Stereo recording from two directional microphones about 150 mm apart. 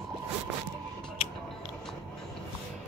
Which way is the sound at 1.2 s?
35° left (ahead or behind).